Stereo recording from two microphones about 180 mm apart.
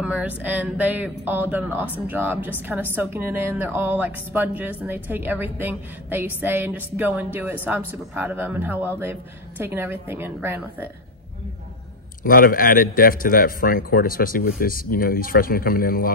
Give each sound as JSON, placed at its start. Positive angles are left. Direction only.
{"t": 0.0, "sound": "a woman's voice", "side_deg": -5}
{"t": 12.2, "sound": "a man's voice", "side_deg": 50}